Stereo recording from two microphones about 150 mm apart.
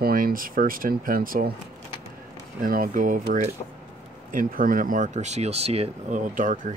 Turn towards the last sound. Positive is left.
turn(degrees=-60)  # may be behind; listen again after turning